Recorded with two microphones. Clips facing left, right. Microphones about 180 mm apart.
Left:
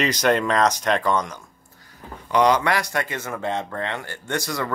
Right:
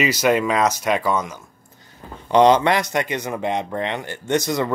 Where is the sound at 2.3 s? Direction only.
25° right (ahead or behind).